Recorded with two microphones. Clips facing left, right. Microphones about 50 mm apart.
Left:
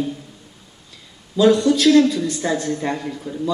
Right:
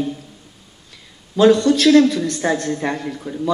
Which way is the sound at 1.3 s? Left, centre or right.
Right.